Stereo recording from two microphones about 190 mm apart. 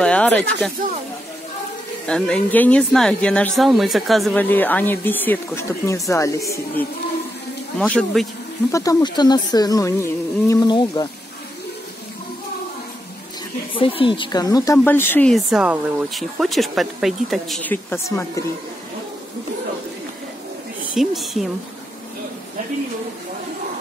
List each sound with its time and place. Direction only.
0.0 s speech: 5° left (ahead or behind)
2.0 s speech: 5° left (ahead or behind)
7.8 s speech: 5° left (ahead or behind)
8.7 s speech: 20° left (ahead or behind)
13.7 s speech: 25° left (ahead or behind)
20.9 s speech: centre (ahead or behind)